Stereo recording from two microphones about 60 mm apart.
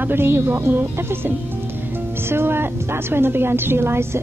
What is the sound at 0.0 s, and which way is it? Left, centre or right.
A woman's voice, right.